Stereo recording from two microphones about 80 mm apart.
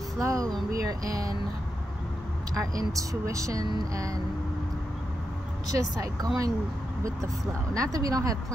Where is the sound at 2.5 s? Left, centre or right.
Right.